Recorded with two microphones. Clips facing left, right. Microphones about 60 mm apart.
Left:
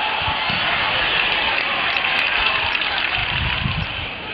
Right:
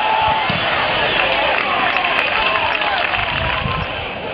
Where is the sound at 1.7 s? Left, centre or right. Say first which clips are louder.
Right 4 dB; centre.